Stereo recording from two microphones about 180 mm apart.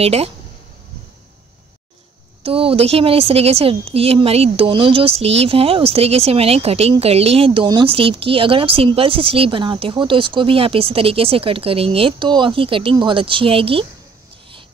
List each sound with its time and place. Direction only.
0.0 s a woman's voice: 35° right (ahead or behind)
2.4 s a woman's voice: 30° right (ahead or behind)